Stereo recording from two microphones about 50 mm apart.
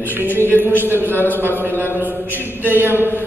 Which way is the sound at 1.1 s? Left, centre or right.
Left.